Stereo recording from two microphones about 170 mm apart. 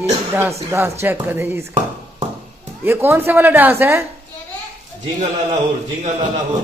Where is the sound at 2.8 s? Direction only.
15° right (ahead or behind).